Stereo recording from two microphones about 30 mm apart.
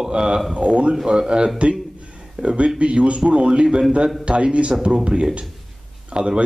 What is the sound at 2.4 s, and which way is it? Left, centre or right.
A man's voice, right.